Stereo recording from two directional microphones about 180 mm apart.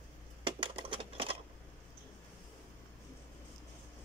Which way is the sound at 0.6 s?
30° right (ahead or behind).